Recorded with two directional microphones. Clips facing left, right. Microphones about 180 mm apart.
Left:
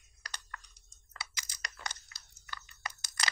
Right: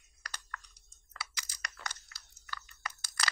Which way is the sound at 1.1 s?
20° left (ahead or behind).